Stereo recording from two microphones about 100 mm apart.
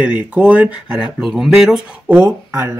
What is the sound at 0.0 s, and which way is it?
Speech, 10° right (ahead or behind).